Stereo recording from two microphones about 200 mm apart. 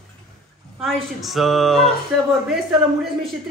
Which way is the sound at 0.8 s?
Centre (ahead or behind).